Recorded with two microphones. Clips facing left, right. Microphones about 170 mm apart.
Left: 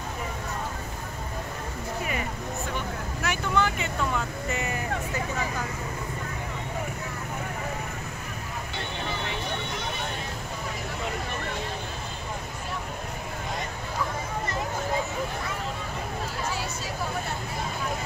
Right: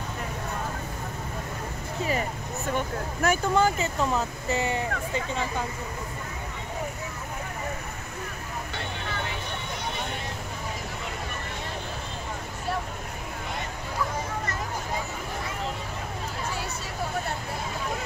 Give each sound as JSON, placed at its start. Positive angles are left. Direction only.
{"t": 3.2, "sound": "speech", "side_deg": -40}